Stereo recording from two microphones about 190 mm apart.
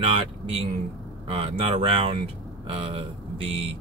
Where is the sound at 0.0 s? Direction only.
30° right (ahead or behind).